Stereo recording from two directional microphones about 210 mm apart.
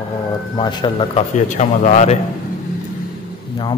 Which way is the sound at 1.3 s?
35° left (ahead or behind).